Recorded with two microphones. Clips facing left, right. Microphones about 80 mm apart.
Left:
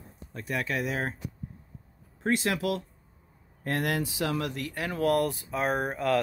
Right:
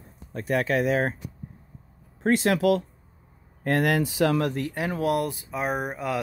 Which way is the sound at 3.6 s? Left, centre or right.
Right.